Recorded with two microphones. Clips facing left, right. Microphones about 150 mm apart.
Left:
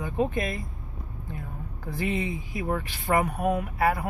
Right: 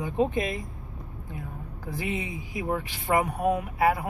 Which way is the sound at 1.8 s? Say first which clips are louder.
Left 3 dB; 10° right (ahead or behind).